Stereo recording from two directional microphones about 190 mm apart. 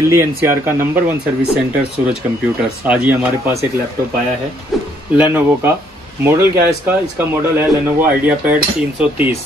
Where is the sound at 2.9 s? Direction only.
10° right (ahead or behind).